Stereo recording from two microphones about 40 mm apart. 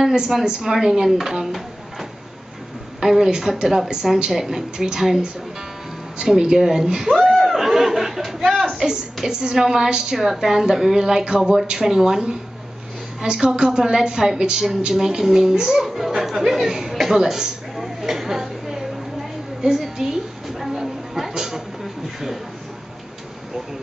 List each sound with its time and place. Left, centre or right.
0.5 s a woman's voice: centre
15.8 s chatter: centre
19.6 s a woman's voice: right
20.4 s a sound: centre